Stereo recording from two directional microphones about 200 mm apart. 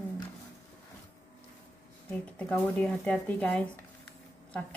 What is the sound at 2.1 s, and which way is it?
A woman's voice, 5° left (ahead or behind).